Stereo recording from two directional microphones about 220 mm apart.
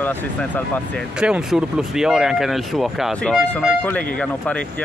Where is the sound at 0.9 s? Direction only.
5° right (ahead or behind).